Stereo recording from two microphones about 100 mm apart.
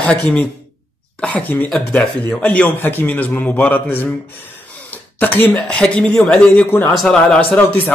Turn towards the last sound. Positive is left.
turn(degrees=15)  # may be behind; listen again after turning